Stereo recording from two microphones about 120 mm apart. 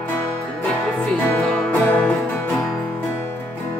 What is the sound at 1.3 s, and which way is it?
Music, 10° left (ahead or behind).